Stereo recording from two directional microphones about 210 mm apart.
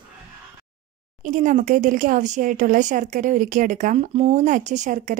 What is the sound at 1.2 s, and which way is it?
A woman's voice, 35° right (ahead or behind).